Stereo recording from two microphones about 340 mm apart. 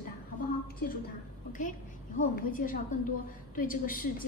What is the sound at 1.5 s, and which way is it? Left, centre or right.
A woman's voice, left.